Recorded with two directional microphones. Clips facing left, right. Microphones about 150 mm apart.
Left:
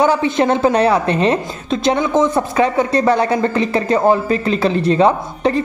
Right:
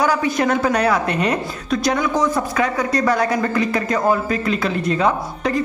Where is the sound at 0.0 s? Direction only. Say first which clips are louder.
Left 4 dB; 25° left (ahead or behind).